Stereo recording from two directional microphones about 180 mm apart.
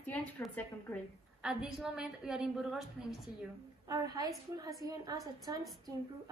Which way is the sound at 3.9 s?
20° right (ahead or behind).